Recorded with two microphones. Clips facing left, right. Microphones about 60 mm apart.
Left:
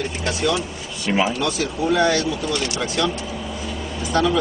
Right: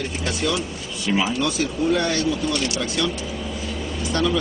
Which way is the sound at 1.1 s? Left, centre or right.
Left.